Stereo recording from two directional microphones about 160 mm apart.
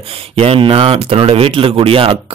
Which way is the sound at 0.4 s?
35° right (ahead or behind).